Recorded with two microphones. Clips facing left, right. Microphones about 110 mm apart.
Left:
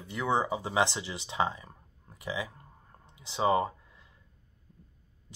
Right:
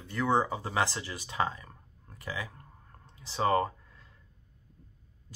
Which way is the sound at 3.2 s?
15° left (ahead or behind).